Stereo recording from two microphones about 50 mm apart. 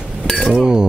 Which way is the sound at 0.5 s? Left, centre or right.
Centre.